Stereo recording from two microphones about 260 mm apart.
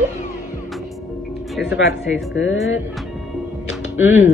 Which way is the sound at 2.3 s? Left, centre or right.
Left.